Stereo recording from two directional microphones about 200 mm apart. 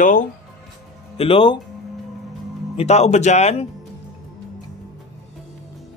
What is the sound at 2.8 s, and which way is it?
Speech, 35° left (ahead or behind).